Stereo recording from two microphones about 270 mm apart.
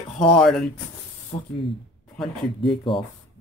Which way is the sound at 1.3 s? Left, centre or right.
Centre.